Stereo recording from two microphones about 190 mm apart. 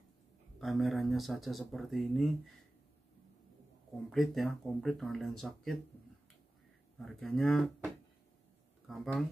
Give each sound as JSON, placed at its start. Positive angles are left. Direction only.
{"t": 0.6, "sound": "speech", "side_deg": 0}
{"t": 4.1, "sound": "speech", "side_deg": 0}
{"t": 7.0, "sound": "speech", "side_deg": 0}